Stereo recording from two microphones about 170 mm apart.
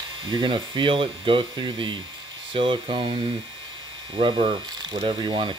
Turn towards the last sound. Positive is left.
turn(degrees=-30)  # may be behind; listen again after turning